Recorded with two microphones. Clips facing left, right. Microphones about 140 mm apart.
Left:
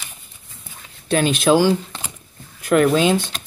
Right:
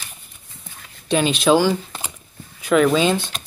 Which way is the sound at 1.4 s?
10° left (ahead or behind).